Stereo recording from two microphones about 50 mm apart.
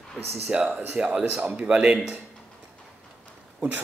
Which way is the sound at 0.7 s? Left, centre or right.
Right.